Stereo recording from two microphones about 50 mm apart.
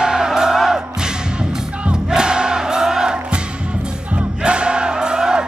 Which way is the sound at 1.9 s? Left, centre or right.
Centre.